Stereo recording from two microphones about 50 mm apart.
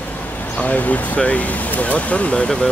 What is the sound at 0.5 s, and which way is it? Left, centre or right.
Speech, left.